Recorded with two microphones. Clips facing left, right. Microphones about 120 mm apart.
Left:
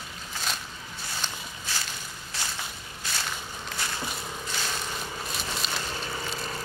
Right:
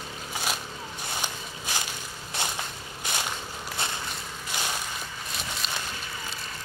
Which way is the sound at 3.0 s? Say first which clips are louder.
Right 3 dB; 15° right (ahead or behind).